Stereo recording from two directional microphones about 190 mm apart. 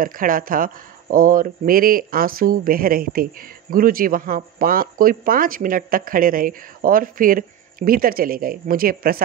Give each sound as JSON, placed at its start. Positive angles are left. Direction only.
{"t": 0.0, "sound": "speech", "side_deg": -45}